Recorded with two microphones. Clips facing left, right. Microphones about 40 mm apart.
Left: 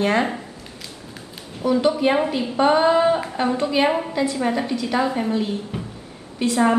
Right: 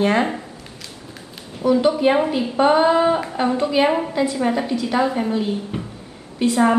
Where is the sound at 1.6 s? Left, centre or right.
Centre.